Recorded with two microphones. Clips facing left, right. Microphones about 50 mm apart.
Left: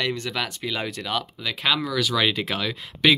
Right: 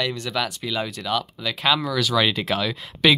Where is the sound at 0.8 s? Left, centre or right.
Left.